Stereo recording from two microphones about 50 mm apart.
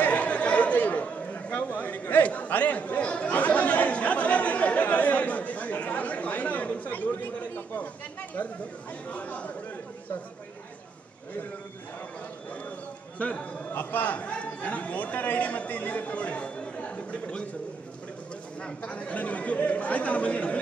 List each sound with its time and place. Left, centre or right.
0.0 s chatter: left
13.2 s a sound: left
14.1 s speech: left
18.6 s speech: left